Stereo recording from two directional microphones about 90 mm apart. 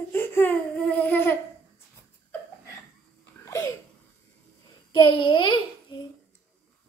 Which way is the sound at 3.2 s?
35° left (ahead or behind).